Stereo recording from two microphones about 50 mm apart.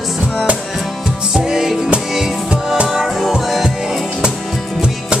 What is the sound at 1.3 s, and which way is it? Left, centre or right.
Music, centre.